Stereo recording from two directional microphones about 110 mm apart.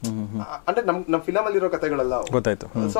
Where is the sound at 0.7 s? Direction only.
15° left (ahead or behind).